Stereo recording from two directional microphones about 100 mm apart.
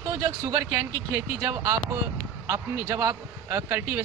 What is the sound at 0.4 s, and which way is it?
A man's voice, 30° right (ahead or behind).